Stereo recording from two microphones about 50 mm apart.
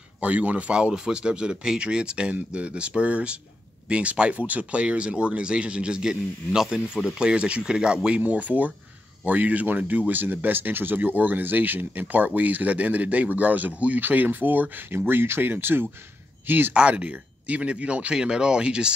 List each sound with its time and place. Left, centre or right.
0.2 s speech: right
0.7 s speech: centre
8.2 s speech: right
16.7 s speech: right
18.1 s speech: centre